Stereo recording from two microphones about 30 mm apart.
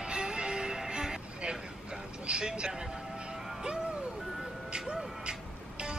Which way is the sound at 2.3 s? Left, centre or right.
Right.